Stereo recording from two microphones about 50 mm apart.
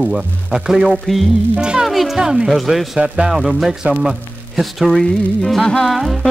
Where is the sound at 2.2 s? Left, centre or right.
Centre.